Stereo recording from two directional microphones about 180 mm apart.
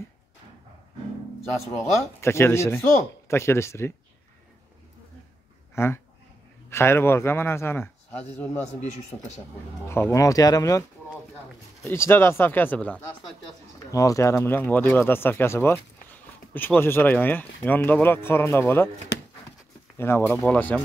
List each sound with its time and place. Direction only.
1.8 s speech: 15° left (ahead or behind)
5.8 s speech: 15° left (ahead or behind)
9.8 s speech: 15° left (ahead or behind)
11.8 s speech: 15° left (ahead or behind)
13.8 s speech: 20° left (ahead or behind)
20.0 s speech: 15° left (ahead or behind)